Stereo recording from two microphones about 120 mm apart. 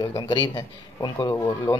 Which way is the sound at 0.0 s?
35° left (ahead or behind).